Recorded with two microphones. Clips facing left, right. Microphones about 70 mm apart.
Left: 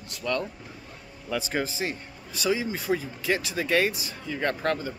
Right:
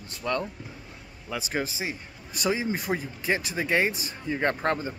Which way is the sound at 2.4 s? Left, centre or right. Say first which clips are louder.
Even; right.